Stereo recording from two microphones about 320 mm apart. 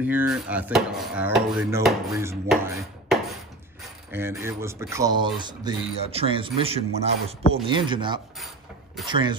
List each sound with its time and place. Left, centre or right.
0.0 s a man's voice: centre